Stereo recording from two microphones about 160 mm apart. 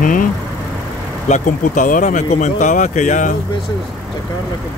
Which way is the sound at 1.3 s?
55° left (ahead or behind).